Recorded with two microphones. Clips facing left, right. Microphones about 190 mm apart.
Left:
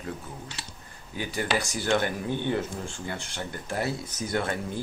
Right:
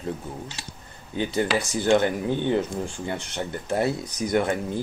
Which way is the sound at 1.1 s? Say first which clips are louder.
Right 5 dB; 25° right (ahead or behind).